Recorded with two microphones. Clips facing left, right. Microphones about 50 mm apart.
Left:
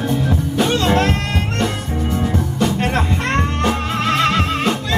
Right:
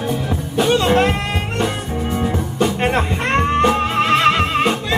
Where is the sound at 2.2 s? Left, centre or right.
Right.